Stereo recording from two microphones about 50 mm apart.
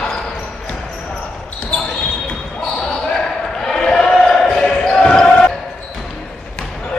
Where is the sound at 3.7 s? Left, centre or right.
Centre.